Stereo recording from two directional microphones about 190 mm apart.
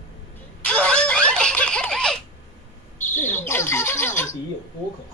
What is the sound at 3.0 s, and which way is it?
Owl, 40° left (ahead or behind).